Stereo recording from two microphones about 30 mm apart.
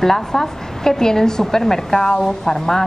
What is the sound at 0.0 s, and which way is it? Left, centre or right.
A woman's voice, centre.